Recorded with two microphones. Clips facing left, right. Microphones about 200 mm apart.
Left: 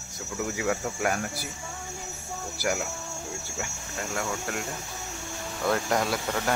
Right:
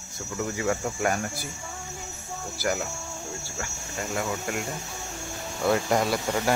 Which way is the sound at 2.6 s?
5° left (ahead or behind).